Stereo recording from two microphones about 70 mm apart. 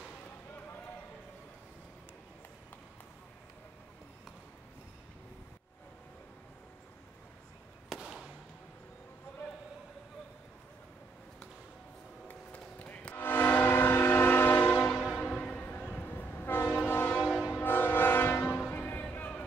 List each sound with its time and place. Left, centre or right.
8.0 s fireworks: centre
12.3 s a sound: centre
13.1 s train: left
15.1 s a sound: centre
15.7 s train: left
16.8 s train horn: left
17.3 s a sound: centre
17.6 s train horn: left
18.7 s music: left